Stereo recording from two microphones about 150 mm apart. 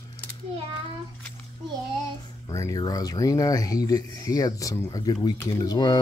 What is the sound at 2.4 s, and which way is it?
Speech, 20° left (ahead or behind).